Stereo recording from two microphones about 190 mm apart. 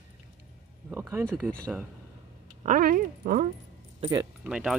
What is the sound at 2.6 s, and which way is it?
Speech, 45° right (ahead or behind).